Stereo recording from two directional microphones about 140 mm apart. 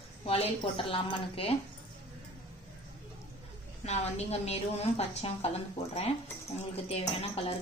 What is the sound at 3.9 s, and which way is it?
A woman's voice, 50° left (ahead or behind).